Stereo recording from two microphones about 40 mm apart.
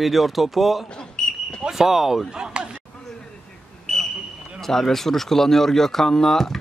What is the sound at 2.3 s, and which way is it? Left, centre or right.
Speech, right.